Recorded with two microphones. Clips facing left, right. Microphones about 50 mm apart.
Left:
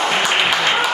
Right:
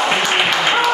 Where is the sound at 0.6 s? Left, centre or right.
Centre.